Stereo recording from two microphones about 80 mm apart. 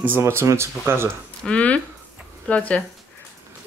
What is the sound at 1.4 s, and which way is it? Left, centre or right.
Speech, centre.